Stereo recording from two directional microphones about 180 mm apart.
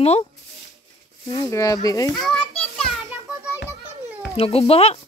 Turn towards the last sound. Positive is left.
turn(degrees=35)  # may be behind; listen again after turning